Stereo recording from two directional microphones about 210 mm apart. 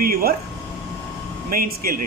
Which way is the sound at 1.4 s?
45° right (ahead or behind).